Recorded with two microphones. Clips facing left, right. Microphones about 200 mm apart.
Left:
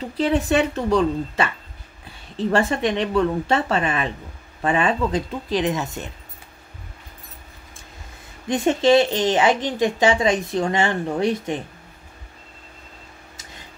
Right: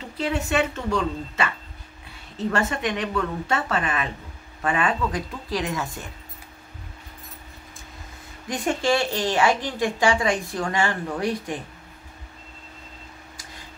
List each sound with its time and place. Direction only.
0.2 s a woman's voice: 35° left (ahead or behind)
8.5 s speech: 25° left (ahead or behind)